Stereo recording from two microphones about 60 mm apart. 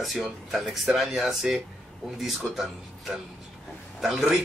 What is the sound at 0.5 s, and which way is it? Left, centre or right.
Speech, centre.